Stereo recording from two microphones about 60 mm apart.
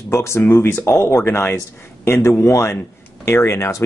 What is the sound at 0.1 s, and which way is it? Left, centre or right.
Speech, left.